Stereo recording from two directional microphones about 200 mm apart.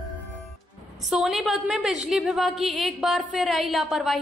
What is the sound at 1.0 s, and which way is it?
A woman's voice, centre (ahead or behind).